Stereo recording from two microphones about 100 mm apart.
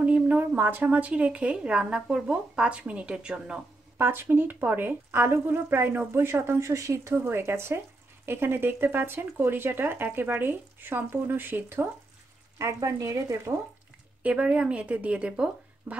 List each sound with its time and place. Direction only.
0.0 s speech: 15° right (ahead or behind)
4.0 s speech: 25° right (ahead or behind)
14.2 s speech: 10° right (ahead or behind)